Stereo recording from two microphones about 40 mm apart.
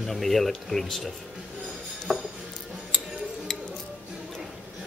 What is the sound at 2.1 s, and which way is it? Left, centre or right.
Music, centre.